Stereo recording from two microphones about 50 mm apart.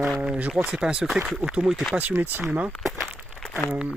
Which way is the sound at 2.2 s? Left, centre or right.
Right.